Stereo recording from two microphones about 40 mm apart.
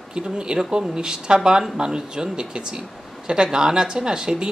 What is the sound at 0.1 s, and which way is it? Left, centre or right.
A man's voice, right.